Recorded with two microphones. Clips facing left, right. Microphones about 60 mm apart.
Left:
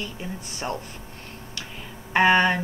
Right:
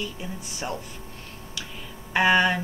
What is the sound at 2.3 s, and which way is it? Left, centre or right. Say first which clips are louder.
Speech: left 1 dB; left.